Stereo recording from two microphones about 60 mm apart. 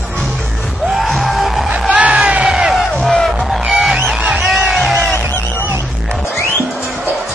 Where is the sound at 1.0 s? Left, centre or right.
Centre.